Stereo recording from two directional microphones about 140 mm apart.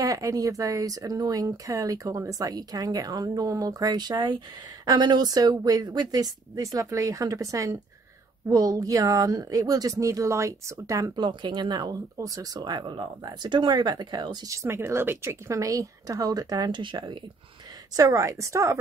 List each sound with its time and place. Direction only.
0.0 s speech: 25° right (ahead or behind)
17.9 s speech: 25° right (ahead or behind)